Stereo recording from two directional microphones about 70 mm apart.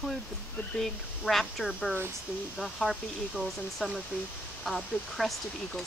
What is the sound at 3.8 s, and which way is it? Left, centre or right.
Speech, centre.